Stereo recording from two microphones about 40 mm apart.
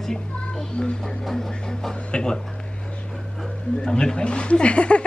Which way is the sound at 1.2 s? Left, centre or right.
Centre.